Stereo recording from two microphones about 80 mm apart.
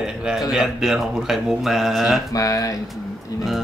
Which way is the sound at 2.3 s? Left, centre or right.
Left.